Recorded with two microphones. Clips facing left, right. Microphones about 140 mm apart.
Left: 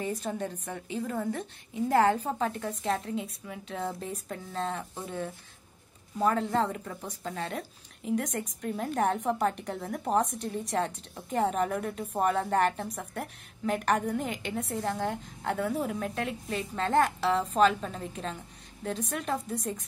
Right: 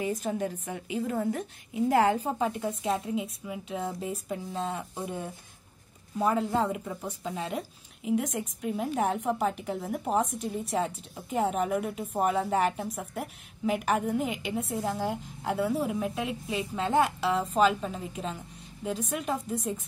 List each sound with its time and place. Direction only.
0.0 s a woman's voice: 10° right (ahead or behind)
4.9 s a woman's voice: 15° right (ahead or behind)